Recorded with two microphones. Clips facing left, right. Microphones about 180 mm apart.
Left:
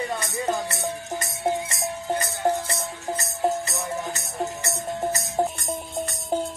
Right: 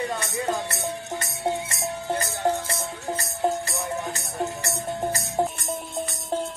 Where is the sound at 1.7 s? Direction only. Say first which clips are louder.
Left 1 dB; 25° left (ahead or behind).